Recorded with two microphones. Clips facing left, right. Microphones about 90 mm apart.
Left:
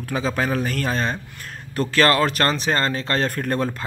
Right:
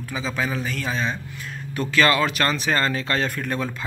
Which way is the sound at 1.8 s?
40° left (ahead or behind).